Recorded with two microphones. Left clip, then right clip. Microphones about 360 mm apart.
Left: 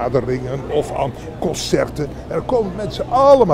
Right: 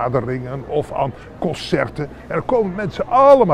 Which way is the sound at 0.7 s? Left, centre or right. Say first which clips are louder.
Even; right.